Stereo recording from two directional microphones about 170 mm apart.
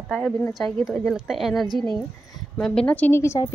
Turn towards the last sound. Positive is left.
turn(degrees=15)  # may be behind; listen again after turning